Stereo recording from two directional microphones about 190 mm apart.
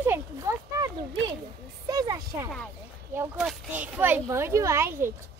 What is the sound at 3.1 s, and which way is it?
Speech, 5° right (ahead or behind).